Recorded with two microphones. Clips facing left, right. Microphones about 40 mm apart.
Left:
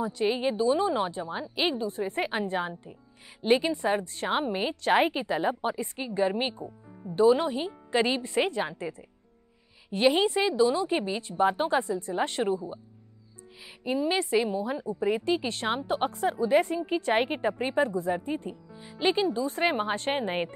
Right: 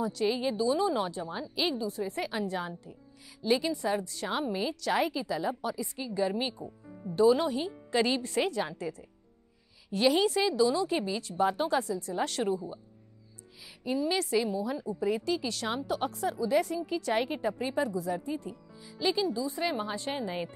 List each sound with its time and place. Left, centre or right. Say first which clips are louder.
0.0 s a woman's voice: left 2 dB; left
13.8 s a woman's voice: left 3 dB; left